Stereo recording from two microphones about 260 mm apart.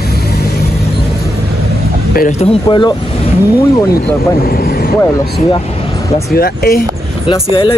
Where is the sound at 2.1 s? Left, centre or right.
Left.